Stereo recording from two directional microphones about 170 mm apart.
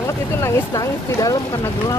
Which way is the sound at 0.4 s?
15° left (ahead or behind).